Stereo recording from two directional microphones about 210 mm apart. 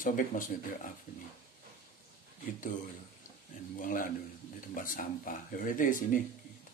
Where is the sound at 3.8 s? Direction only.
40° left (ahead or behind).